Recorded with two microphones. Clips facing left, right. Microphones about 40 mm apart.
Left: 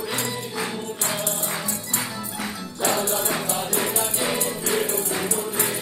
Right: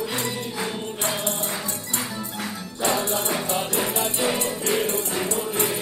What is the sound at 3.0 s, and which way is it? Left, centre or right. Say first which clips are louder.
Music: even; right.